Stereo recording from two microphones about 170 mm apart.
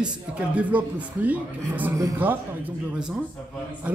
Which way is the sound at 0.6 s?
10° right (ahead or behind).